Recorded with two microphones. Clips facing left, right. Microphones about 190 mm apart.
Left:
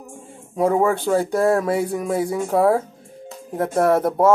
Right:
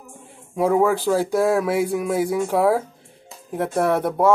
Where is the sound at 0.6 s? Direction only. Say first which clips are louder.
Even; centre (ahead or behind).